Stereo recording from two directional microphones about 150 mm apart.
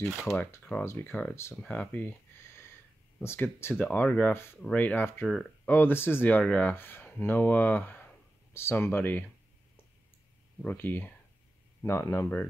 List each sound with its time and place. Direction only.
0.0 s speech: centre (ahead or behind)
0.3 s speech: 15° left (ahead or behind)
1.6 s a sound: 10° left (ahead or behind)
3.2 s speech: 15° left (ahead or behind)
5.2 s speech: centre (ahead or behind)
5.7 s speech: 15° left (ahead or behind)
10.6 s speech: 10° left (ahead or behind)